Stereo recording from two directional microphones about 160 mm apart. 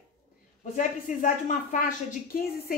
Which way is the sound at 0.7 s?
50° left (ahead or behind).